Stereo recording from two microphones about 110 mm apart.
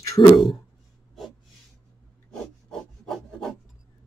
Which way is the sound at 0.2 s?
40° left (ahead or behind).